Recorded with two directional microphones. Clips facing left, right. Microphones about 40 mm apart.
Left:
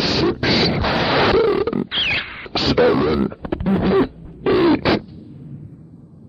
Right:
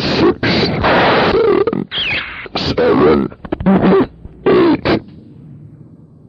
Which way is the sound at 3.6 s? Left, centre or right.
Right.